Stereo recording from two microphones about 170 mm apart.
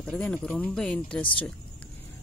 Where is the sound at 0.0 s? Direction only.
5° left (ahead or behind).